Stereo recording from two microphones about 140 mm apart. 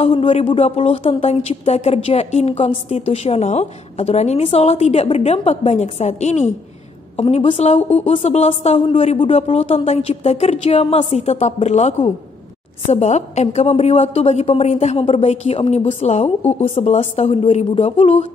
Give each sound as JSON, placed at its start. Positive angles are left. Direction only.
{"t": 0.0, "sound": "a woman's voice", "side_deg": 40}